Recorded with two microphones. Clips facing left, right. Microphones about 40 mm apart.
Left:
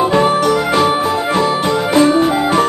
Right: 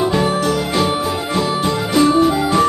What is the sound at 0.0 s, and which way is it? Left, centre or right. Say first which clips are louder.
Jingle bell: left 4 dB; left.